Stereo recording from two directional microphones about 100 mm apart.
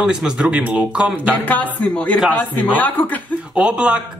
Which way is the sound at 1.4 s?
15° left (ahead or behind).